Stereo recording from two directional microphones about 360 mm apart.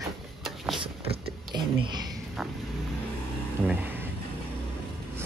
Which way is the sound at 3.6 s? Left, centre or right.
Centre.